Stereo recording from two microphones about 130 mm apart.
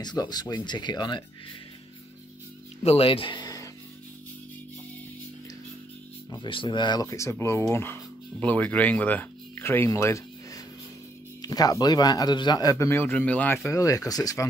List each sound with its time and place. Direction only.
0.0 s speech: 30° left (ahead or behind)
2.8 s speech: 50° left (ahead or behind); by 3.7 s 30° left (ahead or behind)
6.3 s a man's voice: 35° left (ahead or behind)